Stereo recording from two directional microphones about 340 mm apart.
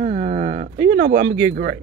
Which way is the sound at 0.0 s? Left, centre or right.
Right.